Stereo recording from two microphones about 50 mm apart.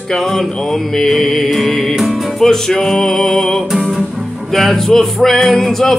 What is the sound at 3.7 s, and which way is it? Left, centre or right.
Music, centre.